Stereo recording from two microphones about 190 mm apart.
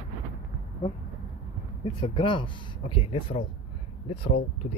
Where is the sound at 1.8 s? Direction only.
25° left (ahead or behind).